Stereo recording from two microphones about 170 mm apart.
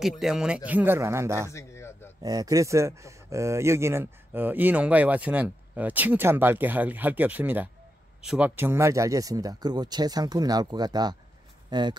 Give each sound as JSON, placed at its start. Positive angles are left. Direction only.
{"t": 0.0, "sound": "speech", "side_deg": 0}
{"t": 1.5, "sound": "a sound", "side_deg": 15}
{"t": 2.2, "sound": "speech", "side_deg": -20}